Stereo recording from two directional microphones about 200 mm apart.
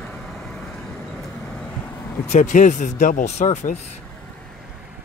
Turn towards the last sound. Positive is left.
turn(degrees=40)  # may be behind; listen again after turning